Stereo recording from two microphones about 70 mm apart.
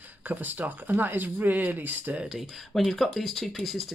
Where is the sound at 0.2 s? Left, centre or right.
Right.